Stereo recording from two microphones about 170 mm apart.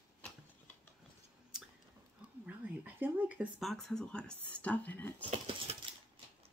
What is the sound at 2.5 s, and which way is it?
Speech, 10° right (ahead or behind).